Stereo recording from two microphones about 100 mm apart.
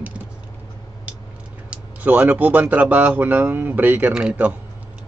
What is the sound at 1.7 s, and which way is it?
Speech, 15° right (ahead or behind).